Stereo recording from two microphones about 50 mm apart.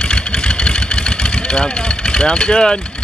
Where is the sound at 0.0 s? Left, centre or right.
Centre.